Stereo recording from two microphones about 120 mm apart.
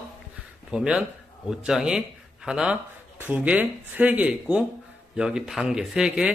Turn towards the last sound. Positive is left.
turn(degrees=-5)  # may be behind; listen again after turning